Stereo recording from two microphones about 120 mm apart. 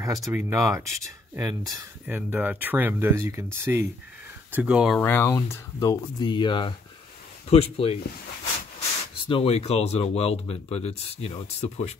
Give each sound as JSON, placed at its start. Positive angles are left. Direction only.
{"t": 0.0, "sound": "speech", "side_deg": -30}
{"t": 2.0, "sound": "speech", "side_deg": -15}
{"t": 4.9, "sound": "speech", "side_deg": 15}
{"t": 7.4, "sound": "speech", "side_deg": 55}
{"t": 9.3, "sound": "speech", "side_deg": 55}